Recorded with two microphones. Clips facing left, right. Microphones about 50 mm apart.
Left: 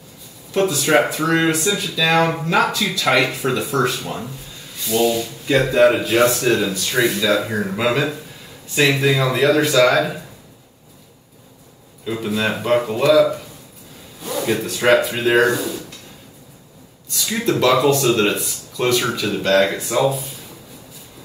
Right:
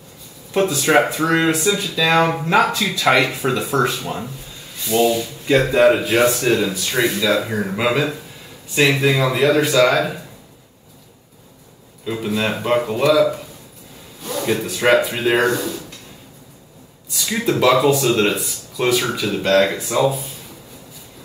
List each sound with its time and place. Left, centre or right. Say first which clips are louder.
0.5 s speech: even; centre
2.4 s speech: right 1 dB; centre
3.2 s speech: even; centre
12.0 s speech: even; centre
17.1 s speech: even; centre